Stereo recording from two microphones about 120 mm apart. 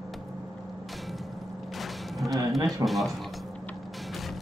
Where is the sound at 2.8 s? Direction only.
Centre (ahead or behind).